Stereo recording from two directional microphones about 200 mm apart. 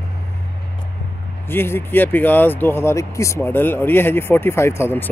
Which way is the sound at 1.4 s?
10° left (ahead or behind).